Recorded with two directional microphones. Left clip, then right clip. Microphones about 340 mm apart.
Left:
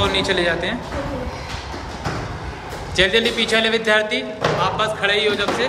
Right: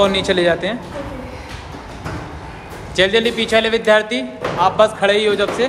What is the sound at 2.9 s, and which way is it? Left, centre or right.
Speech, centre.